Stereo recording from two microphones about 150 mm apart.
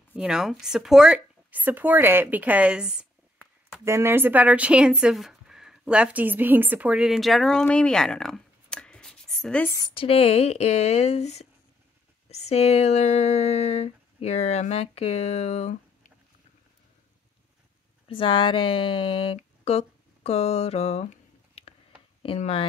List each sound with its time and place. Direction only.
0.1 s speech: 5° right (ahead or behind)
3.8 s speech: 15° right (ahead or behind); by 9.7 s 5° left (ahead or behind)
9.9 s speech: 40° left (ahead or behind)
18.0 s speech: 35° left (ahead or behind)
22.4 s speech: 40° left (ahead or behind)